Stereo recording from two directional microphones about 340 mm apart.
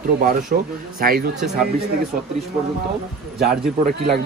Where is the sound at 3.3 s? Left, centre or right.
Centre.